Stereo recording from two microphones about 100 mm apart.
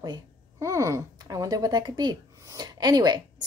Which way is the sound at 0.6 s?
30° right (ahead or behind).